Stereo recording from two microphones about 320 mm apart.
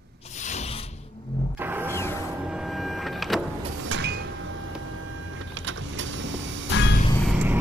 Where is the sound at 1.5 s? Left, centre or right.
Centre.